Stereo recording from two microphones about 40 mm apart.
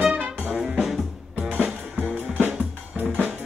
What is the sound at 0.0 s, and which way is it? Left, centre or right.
Music, right.